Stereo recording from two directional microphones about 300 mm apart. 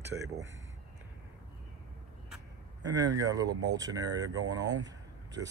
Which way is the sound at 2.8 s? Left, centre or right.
Centre.